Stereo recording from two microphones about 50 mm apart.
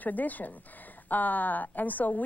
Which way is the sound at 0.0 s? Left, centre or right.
Left.